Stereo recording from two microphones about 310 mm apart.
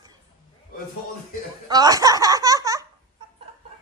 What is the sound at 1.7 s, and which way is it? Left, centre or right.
Speech, centre.